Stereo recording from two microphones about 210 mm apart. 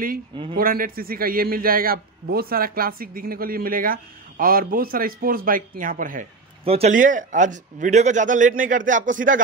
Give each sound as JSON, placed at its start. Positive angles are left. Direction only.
{"t": 0.6, "sound": "a man's voice", "side_deg": -45}
{"t": 6.6, "sound": "a man's voice", "side_deg": -30}